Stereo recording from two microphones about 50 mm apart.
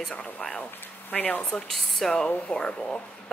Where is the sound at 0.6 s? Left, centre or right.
Left.